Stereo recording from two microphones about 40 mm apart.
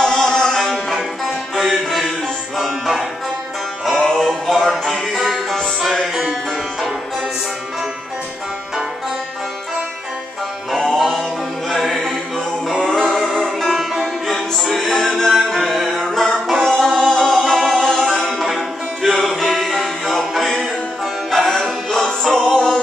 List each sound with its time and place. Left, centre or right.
0.0 s music: centre
0.6 s music: centre
4.1 s music: centre
10.7 s music: centre
12.8 s music: centre
13.1 s music: centre